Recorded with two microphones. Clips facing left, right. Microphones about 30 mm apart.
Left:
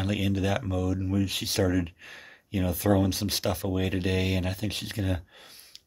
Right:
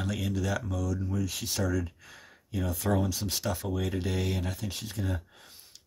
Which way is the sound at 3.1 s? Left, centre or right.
Left.